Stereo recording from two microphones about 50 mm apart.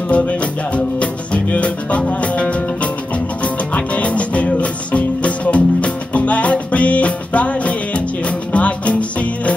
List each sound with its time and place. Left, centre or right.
0.1 s music: left